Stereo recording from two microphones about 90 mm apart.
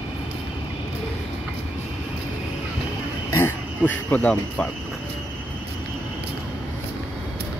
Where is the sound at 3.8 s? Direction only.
15° left (ahead or behind).